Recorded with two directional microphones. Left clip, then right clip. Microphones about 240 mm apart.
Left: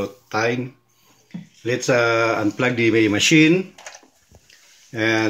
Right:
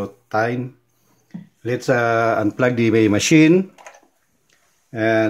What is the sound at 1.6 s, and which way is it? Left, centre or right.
Speech, right.